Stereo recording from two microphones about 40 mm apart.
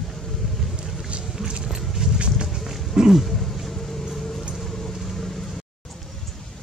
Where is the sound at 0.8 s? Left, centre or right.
Centre.